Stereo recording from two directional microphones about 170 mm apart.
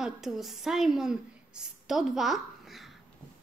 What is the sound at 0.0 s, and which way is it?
A woman's voice, centre (ahead or behind).